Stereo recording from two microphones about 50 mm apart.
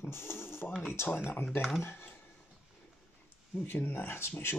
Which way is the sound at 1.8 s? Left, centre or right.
Left.